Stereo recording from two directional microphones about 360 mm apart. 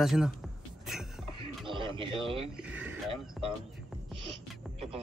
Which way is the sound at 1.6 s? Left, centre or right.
Centre.